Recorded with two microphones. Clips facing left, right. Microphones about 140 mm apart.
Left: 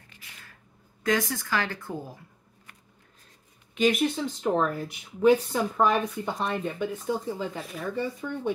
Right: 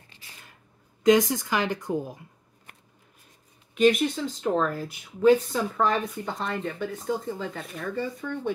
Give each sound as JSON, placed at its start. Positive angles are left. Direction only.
{"t": 0.1, "sound": "a sound", "side_deg": -30}
{"t": 1.0, "sound": "a woman's voice", "side_deg": -20}
{"t": 3.7, "sound": "speech", "side_deg": 0}
{"t": 7.3, "sound": "speech", "side_deg": 5}
{"t": 7.9, "sound": "speech", "side_deg": 15}